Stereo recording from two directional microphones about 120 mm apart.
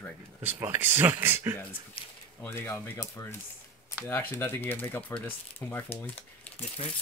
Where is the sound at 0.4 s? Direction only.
15° right (ahead or behind).